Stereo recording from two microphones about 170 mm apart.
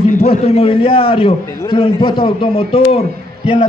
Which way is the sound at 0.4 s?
35° left (ahead or behind).